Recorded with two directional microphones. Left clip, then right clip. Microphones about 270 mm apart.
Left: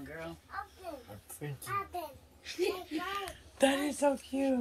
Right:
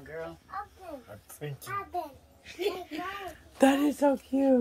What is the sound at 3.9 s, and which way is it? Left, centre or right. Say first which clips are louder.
Music: right 4 dB; right.